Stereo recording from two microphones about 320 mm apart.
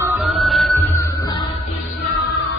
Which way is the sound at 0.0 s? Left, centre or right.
Centre.